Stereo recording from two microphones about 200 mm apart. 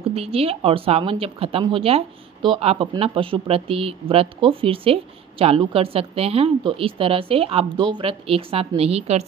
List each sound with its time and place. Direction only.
0.1 s speech: 30° right (ahead or behind)